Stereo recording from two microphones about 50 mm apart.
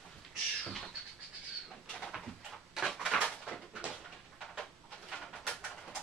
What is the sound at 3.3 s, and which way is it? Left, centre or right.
Dog, left.